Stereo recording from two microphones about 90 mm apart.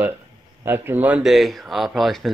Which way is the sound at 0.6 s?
25° right (ahead or behind).